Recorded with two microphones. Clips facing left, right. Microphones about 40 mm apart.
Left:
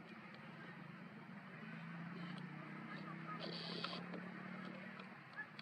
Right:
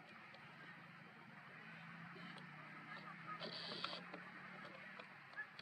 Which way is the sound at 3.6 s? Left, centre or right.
Right.